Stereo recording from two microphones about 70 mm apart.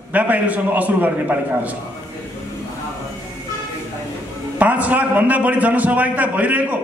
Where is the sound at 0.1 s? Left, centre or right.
Right.